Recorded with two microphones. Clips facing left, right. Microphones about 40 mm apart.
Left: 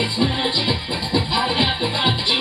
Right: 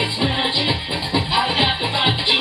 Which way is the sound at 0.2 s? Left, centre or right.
Centre.